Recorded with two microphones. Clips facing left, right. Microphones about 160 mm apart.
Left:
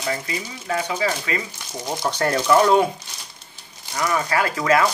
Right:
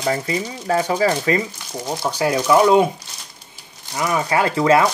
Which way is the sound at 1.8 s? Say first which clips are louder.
Right 2 dB; 10° right (ahead or behind).